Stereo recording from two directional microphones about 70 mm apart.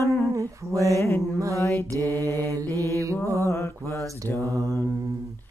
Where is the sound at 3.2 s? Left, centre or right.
Right.